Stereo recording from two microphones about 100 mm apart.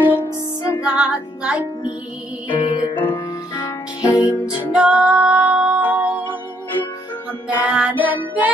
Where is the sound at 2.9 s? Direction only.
20° left (ahead or behind).